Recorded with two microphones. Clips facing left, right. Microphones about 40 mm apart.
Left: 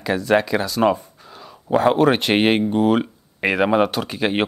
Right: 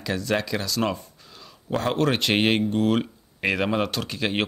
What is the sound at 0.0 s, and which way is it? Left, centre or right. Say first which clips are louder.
Speech: left 7 dB; centre.